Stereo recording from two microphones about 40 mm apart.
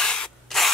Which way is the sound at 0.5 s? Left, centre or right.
Centre.